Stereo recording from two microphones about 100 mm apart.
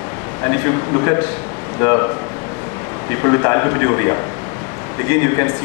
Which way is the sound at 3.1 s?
30° left (ahead or behind).